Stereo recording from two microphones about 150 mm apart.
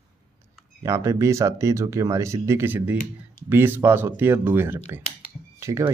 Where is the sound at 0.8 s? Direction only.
20° right (ahead or behind).